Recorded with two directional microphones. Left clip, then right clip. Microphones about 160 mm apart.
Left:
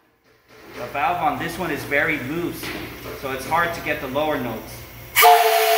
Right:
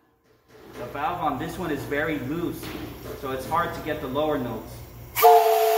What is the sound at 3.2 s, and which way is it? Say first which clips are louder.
Speech: left 4 dB; 30° left (ahead or behind).